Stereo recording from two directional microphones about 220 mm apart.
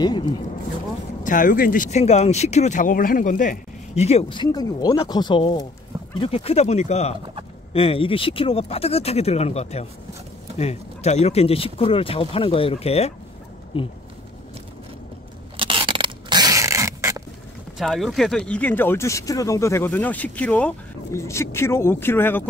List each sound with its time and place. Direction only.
0.0 s speech: 20° left (ahead or behind)
1.2 s speech: 35° left (ahead or behind)
15.5 s a sound: 25° right (ahead or behind)
17.7 s speech: centre (ahead or behind)